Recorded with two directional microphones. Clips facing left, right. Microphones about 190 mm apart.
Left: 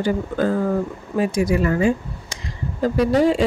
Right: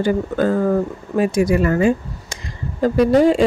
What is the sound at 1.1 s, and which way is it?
Speech, 55° right (ahead or behind).